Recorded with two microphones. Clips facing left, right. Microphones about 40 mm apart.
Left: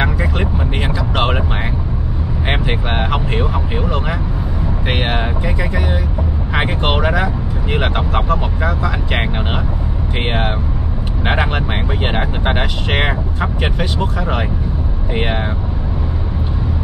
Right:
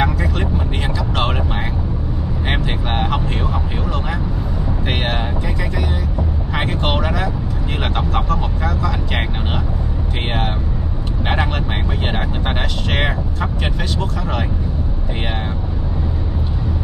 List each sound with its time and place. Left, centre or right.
0.0 s vehicle: left
2.4 s vehicle: centre
11.2 s vehicle: centre